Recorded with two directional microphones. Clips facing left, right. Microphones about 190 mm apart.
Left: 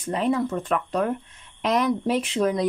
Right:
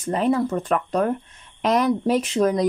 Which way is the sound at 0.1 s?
40° right (ahead or behind).